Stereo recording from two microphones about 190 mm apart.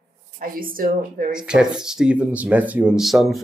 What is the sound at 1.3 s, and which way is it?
Speech, 5° right (ahead or behind).